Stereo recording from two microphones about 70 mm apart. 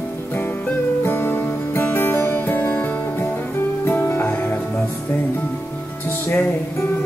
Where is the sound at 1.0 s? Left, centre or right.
Left.